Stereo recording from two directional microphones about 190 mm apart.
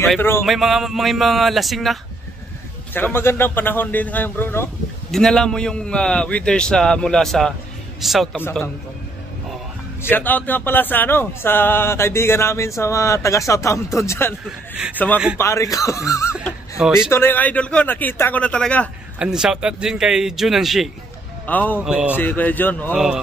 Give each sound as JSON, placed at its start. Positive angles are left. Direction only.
{"t": 0.5, "sound": "a man's voice", "side_deg": 0}
{"t": 2.9, "sound": "a man's voice", "side_deg": 10}
{"t": 8.4, "sound": "speech", "side_deg": 10}
{"t": 10.0, "sound": "speech", "side_deg": 10}
{"t": 16.7, "sound": "speech", "side_deg": -5}
{"t": 17.1, "sound": "speech", "side_deg": 10}
{"t": 19.1, "sound": "a man's voice", "side_deg": -5}
{"t": 21.7, "sound": "a man's voice", "side_deg": -5}
{"t": 22.1, "sound": "speech", "side_deg": 10}
{"t": 22.9, "sound": "a man's voice", "side_deg": 0}